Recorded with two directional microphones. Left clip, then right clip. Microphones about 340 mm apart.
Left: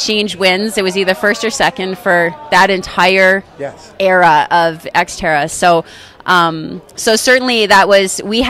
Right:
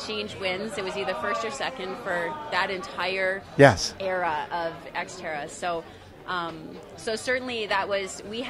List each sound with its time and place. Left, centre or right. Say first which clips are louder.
0.0 s speech: left 17 dB; left